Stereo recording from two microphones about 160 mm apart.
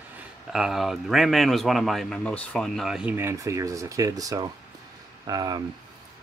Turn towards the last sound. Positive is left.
turn(degrees=-25)  # may be behind; listen again after turning